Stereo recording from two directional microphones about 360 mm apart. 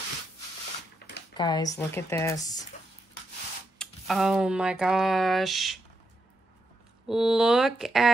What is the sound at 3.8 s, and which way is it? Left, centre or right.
Speech, centre.